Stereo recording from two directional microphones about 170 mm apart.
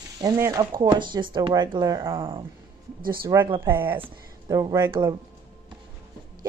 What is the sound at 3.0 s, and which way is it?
Speech, 60° right (ahead or behind).